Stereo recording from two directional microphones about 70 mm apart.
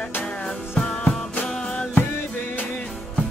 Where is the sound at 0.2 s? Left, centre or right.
Centre.